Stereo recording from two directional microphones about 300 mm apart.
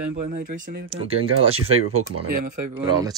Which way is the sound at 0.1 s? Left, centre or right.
Right.